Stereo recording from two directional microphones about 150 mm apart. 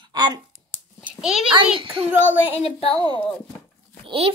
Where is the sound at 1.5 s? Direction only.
35° right (ahead or behind).